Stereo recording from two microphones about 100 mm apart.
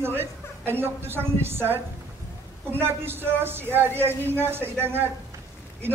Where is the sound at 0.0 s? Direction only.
20° right (ahead or behind).